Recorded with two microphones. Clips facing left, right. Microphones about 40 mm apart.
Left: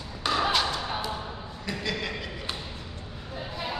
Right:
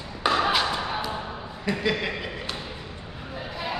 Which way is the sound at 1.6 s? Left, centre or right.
Centre.